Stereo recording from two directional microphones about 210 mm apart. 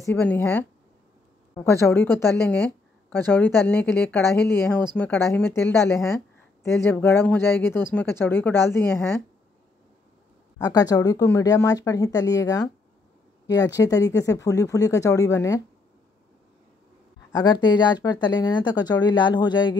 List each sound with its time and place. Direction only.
0.0 s a woman's voice: 10° left (ahead or behind)
10.6 s a woman's voice: 15° left (ahead or behind)
17.4 s speech: 20° left (ahead or behind)